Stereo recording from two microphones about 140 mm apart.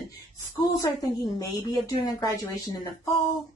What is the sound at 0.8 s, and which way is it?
A woman's voice, 25° left (ahead or behind).